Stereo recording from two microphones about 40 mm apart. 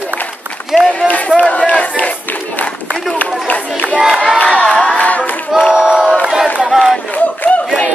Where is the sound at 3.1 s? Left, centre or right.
Left.